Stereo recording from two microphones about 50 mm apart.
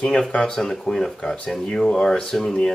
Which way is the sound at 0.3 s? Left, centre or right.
Centre.